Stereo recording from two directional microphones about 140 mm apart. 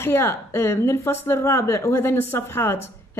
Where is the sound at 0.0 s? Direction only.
15° left (ahead or behind).